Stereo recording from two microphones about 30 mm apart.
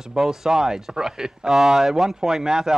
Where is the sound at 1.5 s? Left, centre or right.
Centre.